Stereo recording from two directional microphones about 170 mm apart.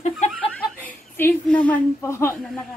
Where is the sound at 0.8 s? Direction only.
10° left (ahead or behind).